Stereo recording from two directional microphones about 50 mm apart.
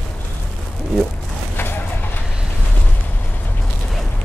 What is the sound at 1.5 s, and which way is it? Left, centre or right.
Vehicle, left.